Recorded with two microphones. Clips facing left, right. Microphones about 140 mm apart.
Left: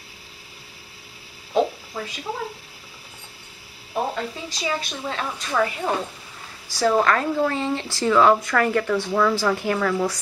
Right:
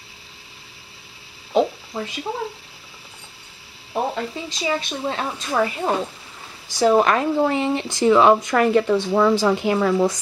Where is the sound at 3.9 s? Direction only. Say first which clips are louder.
Right 2 dB; 15° right (ahead or behind).